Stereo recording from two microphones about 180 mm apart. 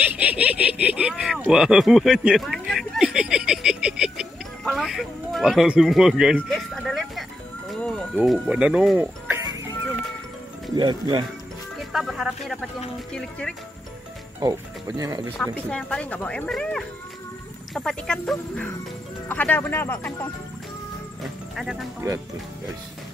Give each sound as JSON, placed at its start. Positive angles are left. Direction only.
{"t": 0.2, "sound": "a sound", "side_deg": -5}
{"t": 7.7, "sound": "bird", "side_deg": 5}
{"t": 8.2, "sound": "speech", "side_deg": -5}
{"t": 10.8, "sound": "speech", "side_deg": -25}
{"t": 11.9, "sound": "a sound", "side_deg": 0}
{"t": 13.1, "sound": "speech", "side_deg": 5}
{"t": 14.4, "sound": "speech", "side_deg": -20}
{"t": 15.4, "sound": "speech", "side_deg": 10}
{"t": 21.2, "sound": "music", "side_deg": 0}